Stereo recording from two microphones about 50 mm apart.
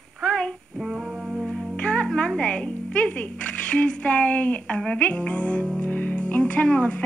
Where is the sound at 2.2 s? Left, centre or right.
Centre.